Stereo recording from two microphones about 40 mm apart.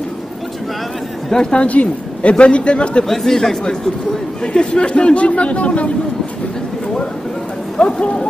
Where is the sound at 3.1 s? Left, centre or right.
Centre.